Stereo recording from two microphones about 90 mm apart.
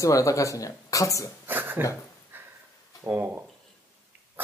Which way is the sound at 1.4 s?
25° right (ahead or behind).